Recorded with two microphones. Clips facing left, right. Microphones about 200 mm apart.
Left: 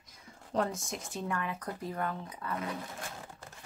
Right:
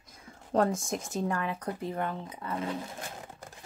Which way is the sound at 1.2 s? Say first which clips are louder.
Right 4 dB; 35° right (ahead or behind).